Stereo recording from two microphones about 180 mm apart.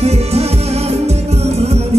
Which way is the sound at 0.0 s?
35° right (ahead or behind).